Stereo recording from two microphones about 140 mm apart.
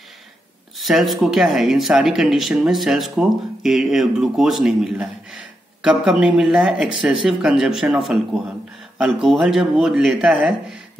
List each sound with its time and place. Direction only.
0.7 s speech: centre (ahead or behind)